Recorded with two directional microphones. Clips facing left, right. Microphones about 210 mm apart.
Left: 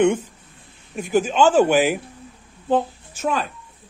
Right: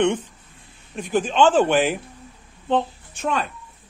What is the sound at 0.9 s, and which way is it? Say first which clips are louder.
A woman's voice: left 1 dB; 5° left (ahead or behind).